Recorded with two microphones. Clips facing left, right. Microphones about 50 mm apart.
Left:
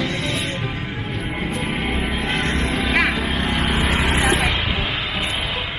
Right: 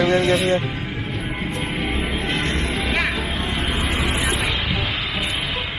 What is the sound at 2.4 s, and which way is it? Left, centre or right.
Vehicle, left.